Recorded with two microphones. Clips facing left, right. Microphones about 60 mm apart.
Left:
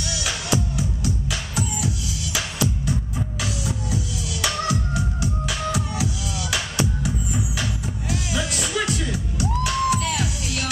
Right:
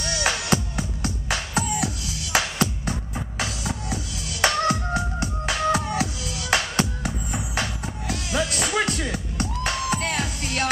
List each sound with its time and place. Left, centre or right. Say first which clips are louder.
0.0 s music: right 3 dB; right